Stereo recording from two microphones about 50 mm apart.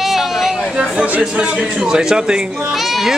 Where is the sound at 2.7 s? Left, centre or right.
Centre.